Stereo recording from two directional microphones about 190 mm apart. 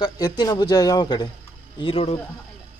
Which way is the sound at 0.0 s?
20° left (ahead or behind).